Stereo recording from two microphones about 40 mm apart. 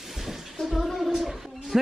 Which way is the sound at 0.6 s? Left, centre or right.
Centre.